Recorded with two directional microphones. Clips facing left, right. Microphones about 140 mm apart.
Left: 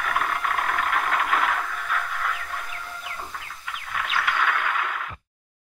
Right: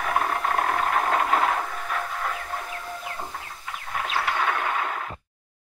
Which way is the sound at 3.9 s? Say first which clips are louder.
Right 1 dB; 30° right (ahead or behind).